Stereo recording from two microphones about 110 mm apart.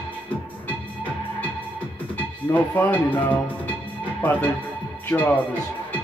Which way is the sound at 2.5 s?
15° left (ahead or behind).